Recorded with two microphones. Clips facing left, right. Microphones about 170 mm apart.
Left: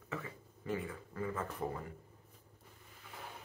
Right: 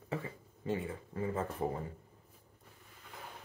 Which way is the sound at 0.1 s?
30° right (ahead or behind).